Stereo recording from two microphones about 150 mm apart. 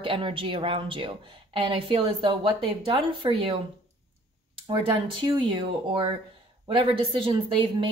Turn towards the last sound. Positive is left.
turn(degrees=-35)  # may be behind; listen again after turning